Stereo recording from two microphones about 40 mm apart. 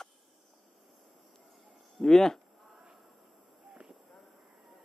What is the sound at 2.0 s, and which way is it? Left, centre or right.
Speech, centre.